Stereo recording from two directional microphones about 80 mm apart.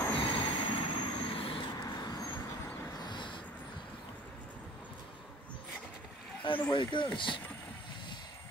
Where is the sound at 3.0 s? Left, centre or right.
Left.